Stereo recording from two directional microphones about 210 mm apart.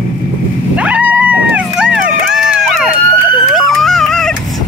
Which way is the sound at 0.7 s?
5° right (ahead or behind).